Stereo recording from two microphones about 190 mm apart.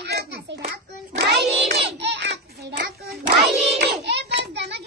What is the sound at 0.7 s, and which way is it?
Hands, 60° right (ahead or behind).